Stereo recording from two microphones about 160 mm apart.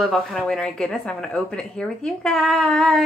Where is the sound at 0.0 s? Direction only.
Centre (ahead or behind).